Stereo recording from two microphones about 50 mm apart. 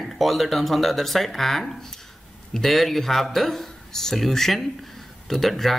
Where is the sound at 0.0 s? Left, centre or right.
Centre.